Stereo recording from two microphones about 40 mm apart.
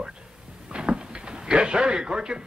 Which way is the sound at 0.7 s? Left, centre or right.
Right.